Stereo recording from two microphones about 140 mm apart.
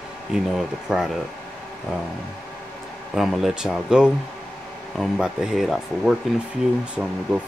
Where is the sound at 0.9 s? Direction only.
5° right (ahead or behind).